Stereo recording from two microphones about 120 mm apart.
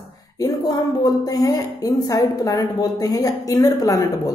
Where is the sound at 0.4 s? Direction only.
30° left (ahead or behind).